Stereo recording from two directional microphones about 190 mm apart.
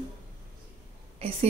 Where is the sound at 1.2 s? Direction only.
30° right (ahead or behind).